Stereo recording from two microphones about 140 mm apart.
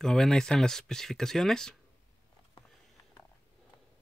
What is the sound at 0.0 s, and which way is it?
Speech, 5° left (ahead or behind).